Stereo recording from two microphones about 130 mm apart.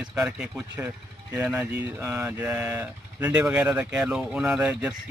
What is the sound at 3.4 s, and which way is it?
Speech, 10° right (ahead or behind).